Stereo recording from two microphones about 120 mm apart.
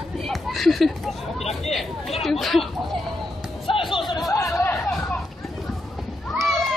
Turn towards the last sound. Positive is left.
turn(degrees=0)  # may be behind; listen again after turning